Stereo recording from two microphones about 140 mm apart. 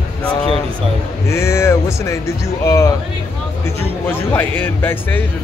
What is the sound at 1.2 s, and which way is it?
Speech, 20° left (ahead or behind).